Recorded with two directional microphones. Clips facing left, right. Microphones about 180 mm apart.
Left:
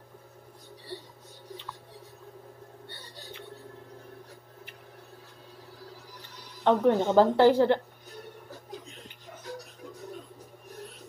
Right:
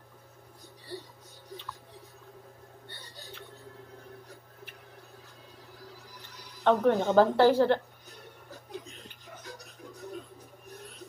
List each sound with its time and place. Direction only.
6.6 s a woman's voice: 15° left (ahead or behind)